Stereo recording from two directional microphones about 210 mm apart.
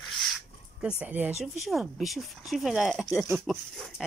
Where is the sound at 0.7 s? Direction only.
5° right (ahead or behind).